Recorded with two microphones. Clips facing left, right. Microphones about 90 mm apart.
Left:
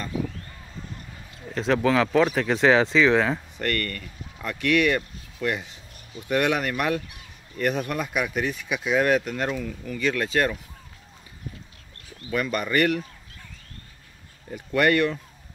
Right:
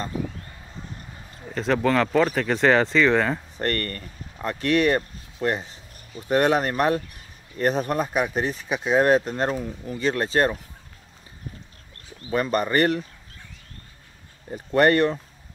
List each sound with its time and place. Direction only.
0.1 s a sound: 40° right (ahead or behind)
1.5 s speech: centre (ahead or behind)
3.5 s speech: 35° right (ahead or behind)
11.4 s a sound: 40° right (ahead or behind)
12.3 s speech: 35° right (ahead or behind)
14.5 s speech: 35° right (ahead or behind)